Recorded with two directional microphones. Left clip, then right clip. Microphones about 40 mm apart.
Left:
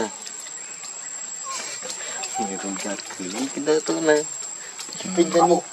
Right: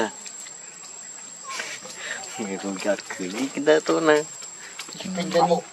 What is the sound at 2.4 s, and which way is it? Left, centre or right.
Speech, centre.